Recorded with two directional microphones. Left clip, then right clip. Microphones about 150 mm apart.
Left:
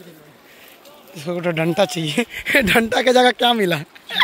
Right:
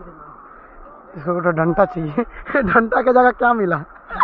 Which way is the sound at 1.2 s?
10° left (ahead or behind).